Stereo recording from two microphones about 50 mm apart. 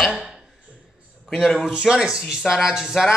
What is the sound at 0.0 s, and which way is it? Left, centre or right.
Speech, centre.